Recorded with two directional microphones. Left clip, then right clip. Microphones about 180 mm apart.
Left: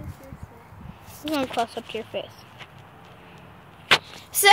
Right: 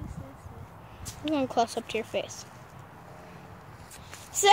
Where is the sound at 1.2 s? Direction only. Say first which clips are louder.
Left 1 dB; 5° right (ahead or behind).